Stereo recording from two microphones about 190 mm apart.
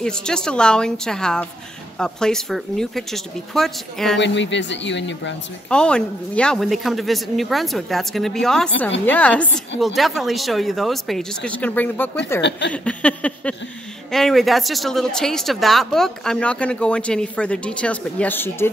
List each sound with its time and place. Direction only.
0.0 s speech: 5° left (ahead or behind)
4.2 s a man's voice: 70° left (ahead or behind)
5.7 s speech: 5° left (ahead or behind)
9.0 s a sound: 10° left (ahead or behind)
9.8 s speech: centre (ahead or behind)
12.4 s a man's voice: 65° left (ahead or behind)
12.7 s a sound: 5° left (ahead or behind)
14.1 s speech: centre (ahead or behind)